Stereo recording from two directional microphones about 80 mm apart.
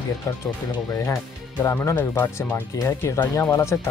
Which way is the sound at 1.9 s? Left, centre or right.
Left.